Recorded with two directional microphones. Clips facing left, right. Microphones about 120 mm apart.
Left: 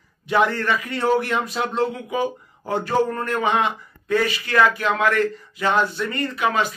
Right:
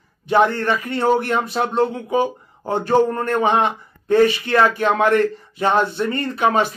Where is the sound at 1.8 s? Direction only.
30° right (ahead or behind).